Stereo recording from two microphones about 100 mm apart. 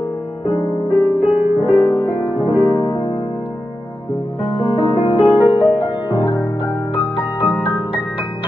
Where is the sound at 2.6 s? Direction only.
50° left (ahead or behind).